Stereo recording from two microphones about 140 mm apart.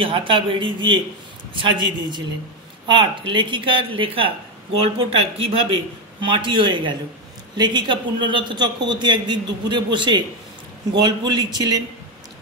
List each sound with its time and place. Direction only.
0.0 s a man's voice: 40° right (ahead or behind)